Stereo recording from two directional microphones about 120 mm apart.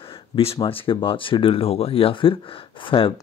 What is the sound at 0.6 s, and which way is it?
Speech, 45° left (ahead or behind).